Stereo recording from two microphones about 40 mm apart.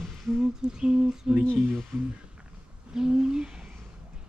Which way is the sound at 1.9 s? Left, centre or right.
Right.